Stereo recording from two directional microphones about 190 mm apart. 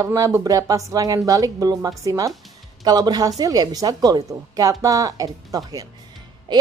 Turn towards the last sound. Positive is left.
turn(degrees=-20)  # may be behind; listen again after turning